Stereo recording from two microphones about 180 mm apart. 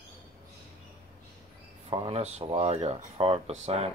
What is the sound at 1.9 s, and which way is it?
Speech, 30° right (ahead or behind).